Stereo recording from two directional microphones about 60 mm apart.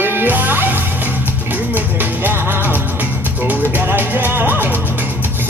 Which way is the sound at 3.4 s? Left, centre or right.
Right.